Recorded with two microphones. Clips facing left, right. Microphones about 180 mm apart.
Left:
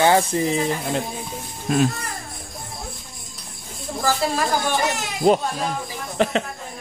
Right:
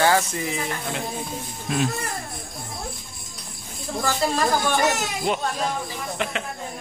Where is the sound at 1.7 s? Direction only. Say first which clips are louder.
Left 5 dB; 45° left (ahead or behind).